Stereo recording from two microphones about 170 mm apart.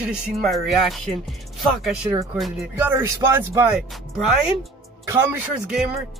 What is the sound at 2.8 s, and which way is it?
Speech, 10° right (ahead or behind).